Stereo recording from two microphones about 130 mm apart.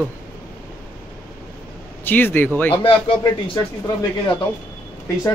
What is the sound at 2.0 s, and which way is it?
Speech, 15° left (ahead or behind).